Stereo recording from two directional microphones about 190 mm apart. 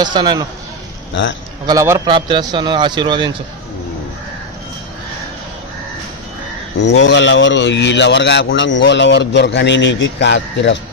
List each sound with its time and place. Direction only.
0.0 s a man's voice: 25° right (ahead or behind)
1.7 s a man's voice: 15° right (ahead or behind)
6.8 s speech: 70° left (ahead or behind)